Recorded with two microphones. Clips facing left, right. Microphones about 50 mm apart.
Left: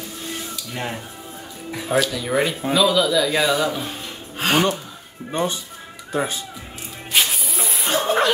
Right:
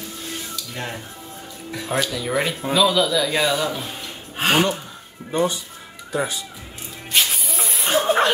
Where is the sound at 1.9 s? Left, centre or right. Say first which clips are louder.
Left 3 dB; centre.